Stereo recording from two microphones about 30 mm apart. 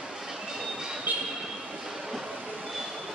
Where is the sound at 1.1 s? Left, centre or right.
Right.